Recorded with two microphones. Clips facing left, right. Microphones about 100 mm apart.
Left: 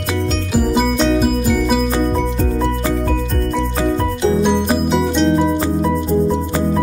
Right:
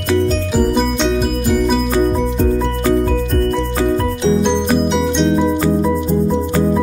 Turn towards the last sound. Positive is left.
turn(degrees=0)  # may be behind; listen again after turning